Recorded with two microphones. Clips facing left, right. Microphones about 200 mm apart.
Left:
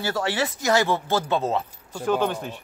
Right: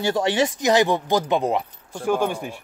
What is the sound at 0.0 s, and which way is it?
Speech, 20° right (ahead or behind).